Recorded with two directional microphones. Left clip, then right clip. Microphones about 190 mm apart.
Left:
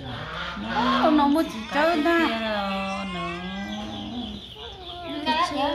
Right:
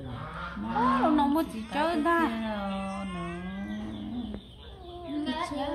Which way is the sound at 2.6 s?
25° left (ahead or behind).